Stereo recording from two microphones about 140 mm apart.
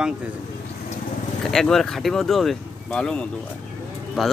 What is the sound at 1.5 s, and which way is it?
Speech, centre (ahead or behind).